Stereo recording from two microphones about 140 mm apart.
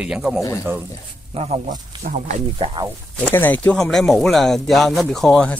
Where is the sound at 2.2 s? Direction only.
60° right (ahead or behind).